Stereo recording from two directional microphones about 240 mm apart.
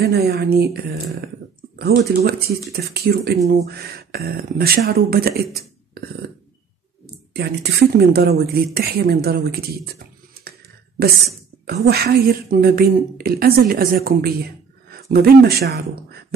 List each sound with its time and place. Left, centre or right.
0.0 s speech: right
7.3 s speech: right
11.0 s speech: right